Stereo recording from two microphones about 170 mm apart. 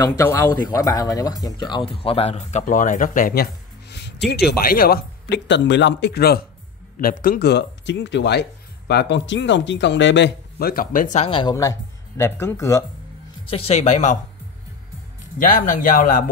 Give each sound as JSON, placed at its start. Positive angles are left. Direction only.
{"t": 0.0, "sound": "speech", "side_deg": 20}
{"t": 2.0, "sound": "speech", "side_deg": 35}
{"t": 4.3, "sound": "speech", "side_deg": 75}
{"t": 11.2, "sound": "speech", "side_deg": 30}
{"t": 11.5, "sound": "speech", "side_deg": 20}
{"t": 13.5, "sound": "speech", "side_deg": 35}
{"t": 15.3, "sound": "speech", "side_deg": 50}